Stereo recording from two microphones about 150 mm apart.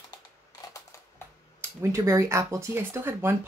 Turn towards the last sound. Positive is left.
turn(degrees=-15)  # may be behind; listen again after turning